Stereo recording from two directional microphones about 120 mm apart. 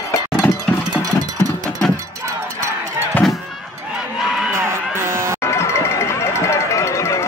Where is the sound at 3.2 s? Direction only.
Centre (ahead or behind).